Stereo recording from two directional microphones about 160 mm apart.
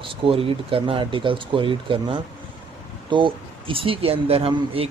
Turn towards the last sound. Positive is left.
turn(degrees=-35)  # may be behind; listen again after turning